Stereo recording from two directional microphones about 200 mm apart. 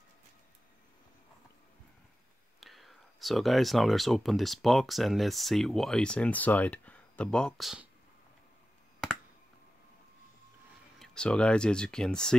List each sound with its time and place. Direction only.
2.6 s speech: centre (ahead or behind)
11.0 s speech: 5° left (ahead or behind)